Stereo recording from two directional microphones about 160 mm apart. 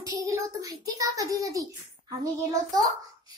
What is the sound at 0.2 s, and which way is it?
A child's voice, 20° right (ahead or behind).